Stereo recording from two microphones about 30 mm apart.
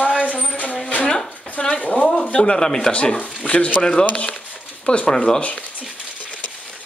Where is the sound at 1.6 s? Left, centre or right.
Left.